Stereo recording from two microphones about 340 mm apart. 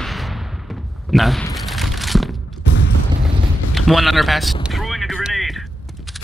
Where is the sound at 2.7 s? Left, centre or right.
Left.